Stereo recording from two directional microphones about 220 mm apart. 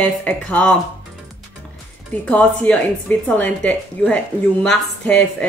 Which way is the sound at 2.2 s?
5° left (ahead or behind).